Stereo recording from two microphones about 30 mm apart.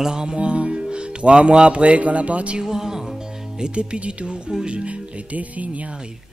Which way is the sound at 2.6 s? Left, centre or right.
Centre.